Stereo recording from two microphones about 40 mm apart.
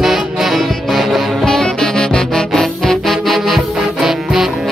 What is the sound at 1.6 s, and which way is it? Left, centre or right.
Music, centre.